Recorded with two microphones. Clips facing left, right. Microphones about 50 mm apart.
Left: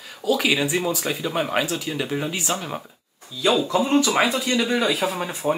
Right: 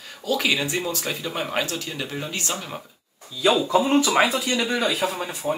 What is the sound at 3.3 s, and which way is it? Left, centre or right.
Speech, centre.